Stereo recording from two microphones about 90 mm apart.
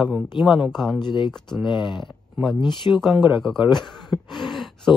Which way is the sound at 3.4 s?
Centre (ahead or behind).